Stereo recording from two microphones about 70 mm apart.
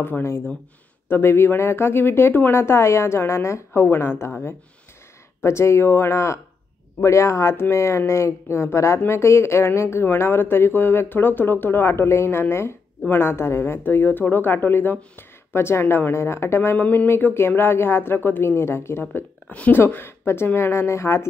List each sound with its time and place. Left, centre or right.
0.0 s speech: left
5.4 s speech: left
16.7 s speech: left
19.5 s speech: left
19.9 s speech: left